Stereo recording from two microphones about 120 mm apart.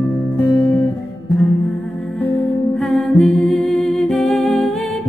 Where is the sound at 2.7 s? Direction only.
Centre (ahead or behind).